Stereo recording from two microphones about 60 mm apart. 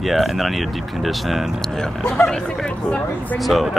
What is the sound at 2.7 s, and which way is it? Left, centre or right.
Speech, left.